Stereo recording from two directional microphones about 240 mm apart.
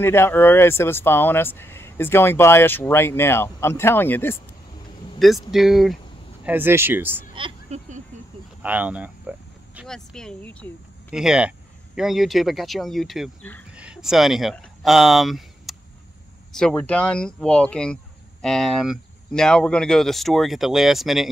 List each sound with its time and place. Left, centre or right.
0.0 s speech: centre
5.5 s speech: centre
7.3 s a sound: right
8.6 s speech: centre